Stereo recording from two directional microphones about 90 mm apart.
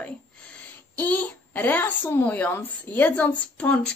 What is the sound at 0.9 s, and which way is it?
A child's voice, 15° left (ahead or behind).